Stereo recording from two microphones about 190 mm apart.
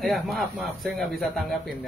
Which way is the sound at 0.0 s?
Centre (ahead or behind).